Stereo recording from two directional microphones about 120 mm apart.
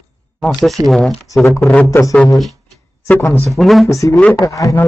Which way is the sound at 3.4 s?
Centre (ahead or behind).